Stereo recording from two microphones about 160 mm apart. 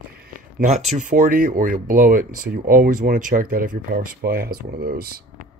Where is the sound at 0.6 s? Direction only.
45° right (ahead or behind); by 5.5 s 65° right (ahead or behind).